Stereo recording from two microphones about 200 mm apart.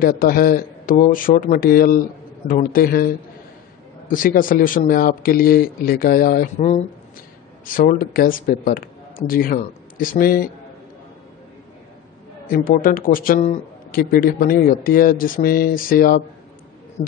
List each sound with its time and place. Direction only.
0.0 s speech: 45° left (ahead or behind)
12.4 s speech: 45° left (ahead or behind)